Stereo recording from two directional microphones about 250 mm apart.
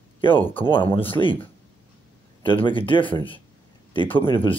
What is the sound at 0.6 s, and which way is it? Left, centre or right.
Speech, centre.